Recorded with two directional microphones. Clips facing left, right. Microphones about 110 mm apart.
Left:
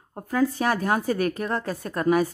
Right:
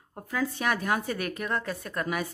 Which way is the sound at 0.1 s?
40° left (ahead or behind).